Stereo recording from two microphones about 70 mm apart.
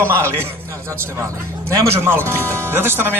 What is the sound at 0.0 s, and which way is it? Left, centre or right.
Speech, right.